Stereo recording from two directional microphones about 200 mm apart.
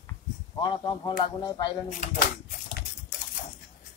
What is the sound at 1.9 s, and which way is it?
Speech, 40° left (ahead or behind).